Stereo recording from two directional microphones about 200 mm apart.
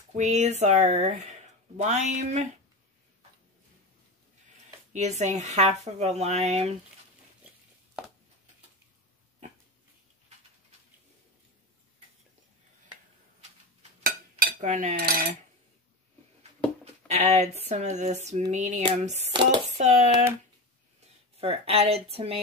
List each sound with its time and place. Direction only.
0.1 s speech: 35° right (ahead or behind)
4.9 s speech: 35° right (ahead or behind)
14.4 s cutlery: 40° right (ahead or behind)
16.8 s speech: 30° right (ahead or behind)
21.4 s speech: 30° right (ahead or behind)